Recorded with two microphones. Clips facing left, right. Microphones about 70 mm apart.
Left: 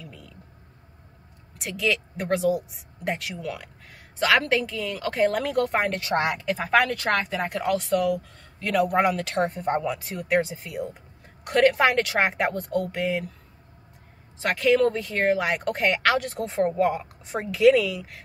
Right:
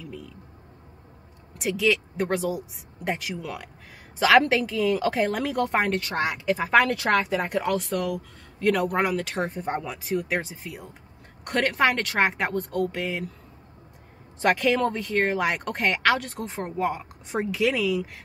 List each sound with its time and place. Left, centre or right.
0.0 s a sound: centre
1.6 s a woman's voice: centre
14.4 s a woman's voice: centre